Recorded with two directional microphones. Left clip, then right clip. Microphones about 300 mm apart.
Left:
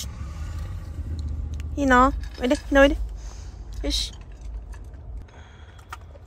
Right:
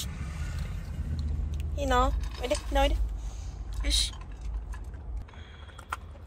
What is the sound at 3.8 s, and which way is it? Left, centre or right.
Speech, centre.